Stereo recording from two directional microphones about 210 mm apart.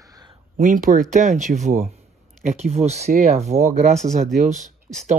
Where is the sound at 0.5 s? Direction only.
40° right (ahead or behind).